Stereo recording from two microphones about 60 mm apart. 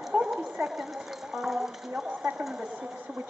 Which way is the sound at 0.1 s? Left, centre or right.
Centre.